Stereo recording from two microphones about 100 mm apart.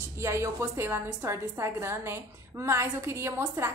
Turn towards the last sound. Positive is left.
turn(degrees=-25)  # may be behind; listen again after turning